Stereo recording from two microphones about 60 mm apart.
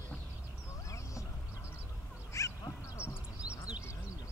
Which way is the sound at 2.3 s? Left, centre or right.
Left.